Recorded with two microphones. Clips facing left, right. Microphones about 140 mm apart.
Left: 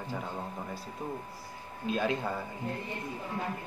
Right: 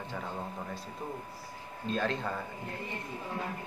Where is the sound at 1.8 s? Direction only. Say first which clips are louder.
Left 2 dB; 10° left (ahead or behind).